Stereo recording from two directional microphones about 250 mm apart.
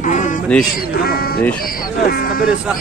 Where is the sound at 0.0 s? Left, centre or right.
Left.